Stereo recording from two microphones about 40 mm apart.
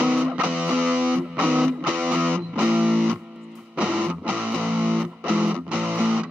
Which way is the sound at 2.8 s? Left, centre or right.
Right.